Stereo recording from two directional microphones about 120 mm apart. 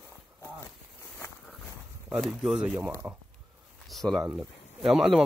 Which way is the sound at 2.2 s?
5° right (ahead or behind).